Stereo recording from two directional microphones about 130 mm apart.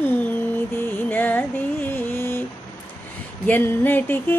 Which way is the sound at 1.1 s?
15° left (ahead or behind).